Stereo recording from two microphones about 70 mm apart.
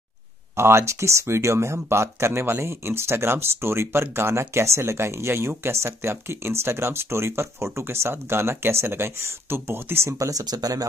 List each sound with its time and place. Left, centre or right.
0.6 s speech: right
10.1 s speech: right